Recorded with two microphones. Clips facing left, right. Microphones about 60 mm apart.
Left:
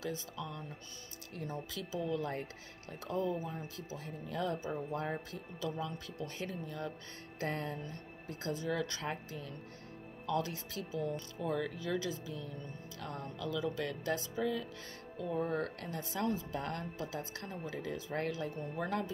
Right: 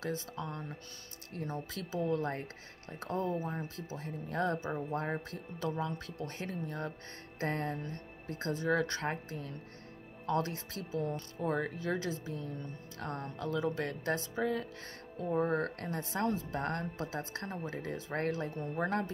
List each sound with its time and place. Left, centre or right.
0.0 s speech: right